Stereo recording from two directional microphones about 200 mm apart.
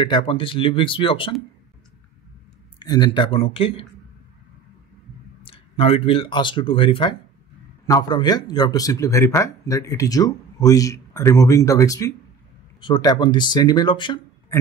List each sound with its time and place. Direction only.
0.0 s speech: 25° left (ahead or behind)
2.8 s speech: 20° left (ahead or behind)
5.4 s speech: 30° left (ahead or behind)